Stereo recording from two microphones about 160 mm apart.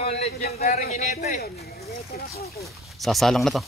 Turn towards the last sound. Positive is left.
turn(degrees=0)  # may be behind; listen again after turning